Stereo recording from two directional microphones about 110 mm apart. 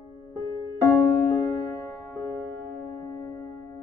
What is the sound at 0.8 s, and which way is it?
Music, 20° left (ahead or behind).